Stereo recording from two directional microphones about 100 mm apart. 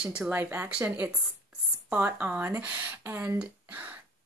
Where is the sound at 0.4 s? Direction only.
20° right (ahead or behind).